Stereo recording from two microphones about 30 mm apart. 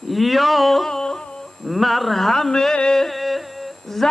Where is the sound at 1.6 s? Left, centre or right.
Centre.